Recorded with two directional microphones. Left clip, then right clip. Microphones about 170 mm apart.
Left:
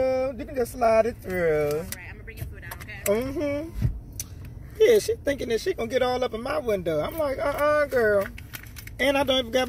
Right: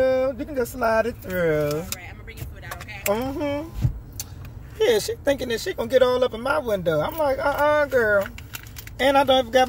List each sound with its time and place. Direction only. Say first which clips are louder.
0.4 s speech: even; 10° right (ahead or behind)
3.1 s speech: right 1 dB; 5° right (ahead or behind)
4.7 s speech: left 2 dB; 10° right (ahead or behind)